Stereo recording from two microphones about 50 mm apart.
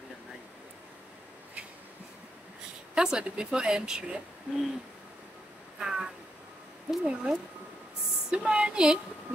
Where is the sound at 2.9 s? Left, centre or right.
Centre.